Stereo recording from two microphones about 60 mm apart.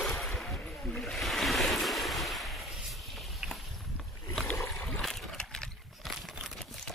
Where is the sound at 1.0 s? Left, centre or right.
Centre.